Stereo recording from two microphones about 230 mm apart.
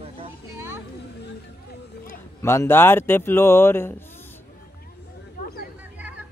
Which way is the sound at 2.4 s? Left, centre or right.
Centre.